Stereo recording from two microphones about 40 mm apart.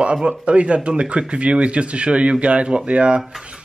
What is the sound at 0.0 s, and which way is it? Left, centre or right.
A man's voice, right.